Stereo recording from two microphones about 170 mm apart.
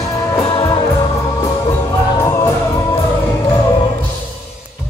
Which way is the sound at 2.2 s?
15° left (ahead or behind).